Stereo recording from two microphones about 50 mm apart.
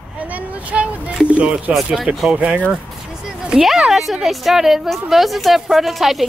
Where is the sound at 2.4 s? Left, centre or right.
Right.